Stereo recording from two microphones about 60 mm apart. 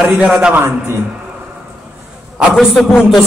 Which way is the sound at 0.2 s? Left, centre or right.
Centre.